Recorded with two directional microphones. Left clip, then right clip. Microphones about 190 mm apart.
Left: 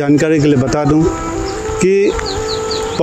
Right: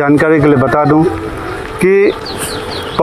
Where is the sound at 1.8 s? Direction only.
30° left (ahead or behind).